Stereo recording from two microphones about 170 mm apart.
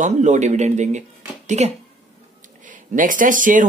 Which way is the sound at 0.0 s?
45° right (ahead or behind).